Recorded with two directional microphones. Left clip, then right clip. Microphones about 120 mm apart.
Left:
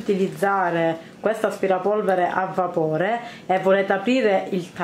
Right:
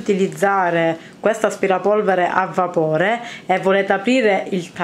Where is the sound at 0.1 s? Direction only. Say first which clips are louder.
Right 4 dB; 30° right (ahead or behind).